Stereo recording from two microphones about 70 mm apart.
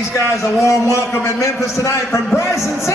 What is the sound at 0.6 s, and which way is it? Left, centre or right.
A man's voice, left.